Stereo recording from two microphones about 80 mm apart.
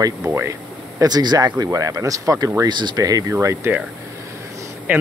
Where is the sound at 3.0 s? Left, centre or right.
Right.